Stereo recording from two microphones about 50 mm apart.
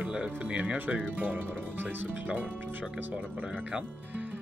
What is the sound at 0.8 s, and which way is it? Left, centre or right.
Speech, right.